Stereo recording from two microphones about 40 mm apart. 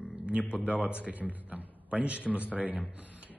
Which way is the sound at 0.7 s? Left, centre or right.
Right.